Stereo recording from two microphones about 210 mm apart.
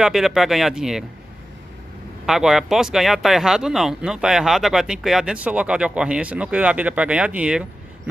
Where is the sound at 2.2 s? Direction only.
Centre (ahead or behind).